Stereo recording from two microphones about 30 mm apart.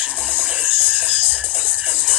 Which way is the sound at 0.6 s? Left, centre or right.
Right.